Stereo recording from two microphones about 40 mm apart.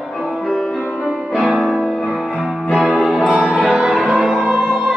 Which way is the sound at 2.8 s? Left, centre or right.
Centre.